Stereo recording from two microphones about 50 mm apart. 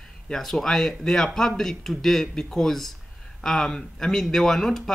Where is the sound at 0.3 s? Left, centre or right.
Centre.